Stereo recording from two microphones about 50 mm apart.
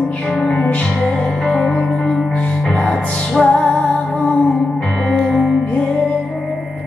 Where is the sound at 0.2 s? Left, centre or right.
Centre.